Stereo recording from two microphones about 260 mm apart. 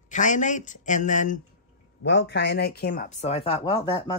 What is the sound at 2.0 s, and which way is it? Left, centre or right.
A man's voice, left.